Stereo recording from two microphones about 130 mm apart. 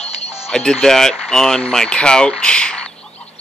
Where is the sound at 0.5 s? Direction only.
5° left (ahead or behind).